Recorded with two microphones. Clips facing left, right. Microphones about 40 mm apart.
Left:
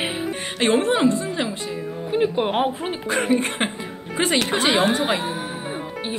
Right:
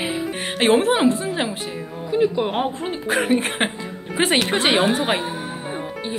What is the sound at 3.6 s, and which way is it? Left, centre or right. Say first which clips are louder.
Music: right 2 dB; right.